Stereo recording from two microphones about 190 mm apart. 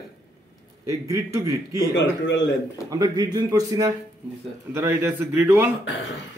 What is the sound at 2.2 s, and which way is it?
Speech, 70° left (ahead or behind).